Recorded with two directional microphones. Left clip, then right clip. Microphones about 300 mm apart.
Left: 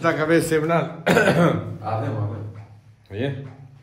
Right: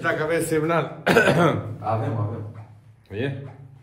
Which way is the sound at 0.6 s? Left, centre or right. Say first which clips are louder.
Left 1 dB; centre.